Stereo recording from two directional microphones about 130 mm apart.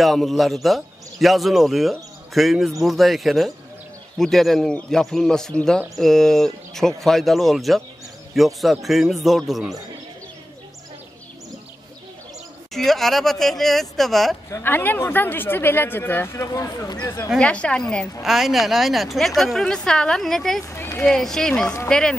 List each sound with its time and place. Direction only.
0.0 s a man's voice: centre (ahead or behind)
12.7 s a man's voice: centre (ahead or behind)
14.5 s speech: 15° left (ahead or behind)
17.4 s a man's voice: 10° left (ahead or behind)
20.6 s speech: 20° left (ahead or behind)
21.1 s a man's voice: 5° left (ahead or behind)